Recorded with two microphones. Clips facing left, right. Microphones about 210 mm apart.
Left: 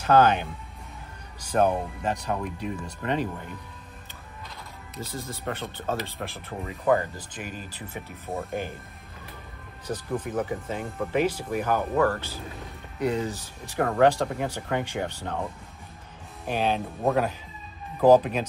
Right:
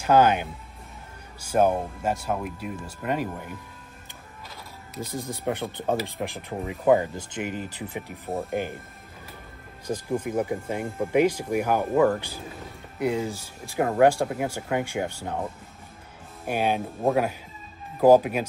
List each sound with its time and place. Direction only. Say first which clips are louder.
0.0 s speech: even; 10° right (ahead or behind)
5.0 s speech: right 4 dB; 15° right (ahead or behind)
8.3 s speech: right 2 dB; centre (ahead or behind)
9.8 s speech: right 3 dB; 10° right (ahead or behind)